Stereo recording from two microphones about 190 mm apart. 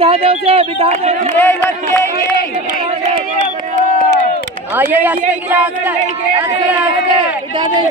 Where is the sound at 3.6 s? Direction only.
40° right (ahead or behind).